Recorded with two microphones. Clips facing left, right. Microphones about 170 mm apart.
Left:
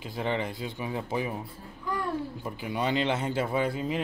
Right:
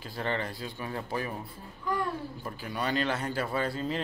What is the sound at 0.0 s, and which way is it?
Speech, 15° left (ahead or behind).